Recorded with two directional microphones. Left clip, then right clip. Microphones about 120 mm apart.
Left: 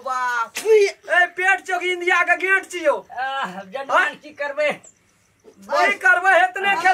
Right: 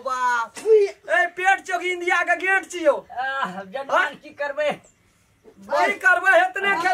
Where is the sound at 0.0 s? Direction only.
10° right (ahead or behind).